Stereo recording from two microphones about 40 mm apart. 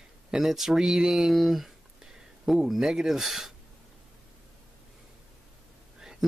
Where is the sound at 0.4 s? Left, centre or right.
Centre.